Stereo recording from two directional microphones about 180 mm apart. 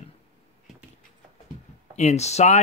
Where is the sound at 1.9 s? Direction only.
35° left (ahead or behind).